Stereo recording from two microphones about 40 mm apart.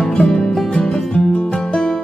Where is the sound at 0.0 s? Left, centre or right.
Centre.